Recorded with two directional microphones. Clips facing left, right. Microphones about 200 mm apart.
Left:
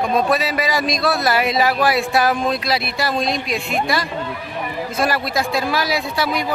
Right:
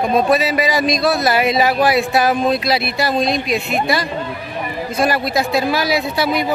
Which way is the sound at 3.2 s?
Centre (ahead or behind).